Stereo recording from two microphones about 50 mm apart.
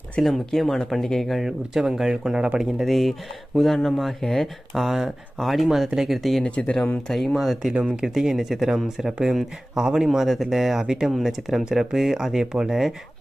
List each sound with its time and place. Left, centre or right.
0.2 s speech: centre
1.4 s speech: centre
2.8 s speech: centre
6.5 s speech: left
7.1 s speech: centre
7.7 s speech: centre